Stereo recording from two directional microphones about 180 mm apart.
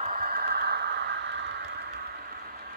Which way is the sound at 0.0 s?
50° right (ahead or behind).